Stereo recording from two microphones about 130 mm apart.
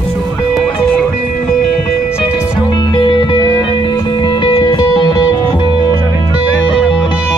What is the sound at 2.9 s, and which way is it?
Music, 40° left (ahead or behind).